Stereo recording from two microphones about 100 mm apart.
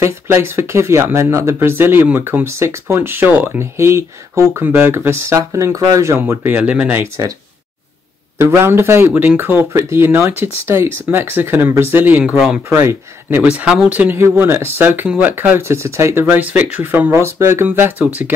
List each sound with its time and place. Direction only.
0.0 s speech: 25° right (ahead or behind)
8.4 s speech: 25° right (ahead or behind)
13.4 s speech: 10° right (ahead or behind)